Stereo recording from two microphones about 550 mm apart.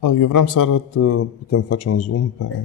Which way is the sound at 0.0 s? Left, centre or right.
Left.